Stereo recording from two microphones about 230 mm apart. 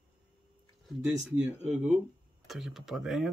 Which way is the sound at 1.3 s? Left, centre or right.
Centre.